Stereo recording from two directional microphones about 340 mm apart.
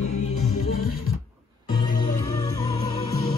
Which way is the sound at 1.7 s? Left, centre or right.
Centre.